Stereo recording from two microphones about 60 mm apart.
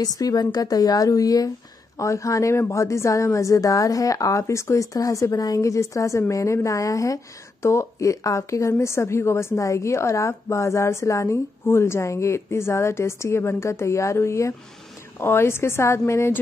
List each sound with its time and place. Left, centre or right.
0.0 s a woman's voice: left
2.0 s speech: left
4.9 s a woman's voice: left